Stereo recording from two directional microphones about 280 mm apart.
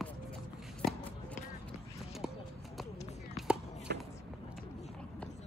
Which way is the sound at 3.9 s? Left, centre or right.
Right.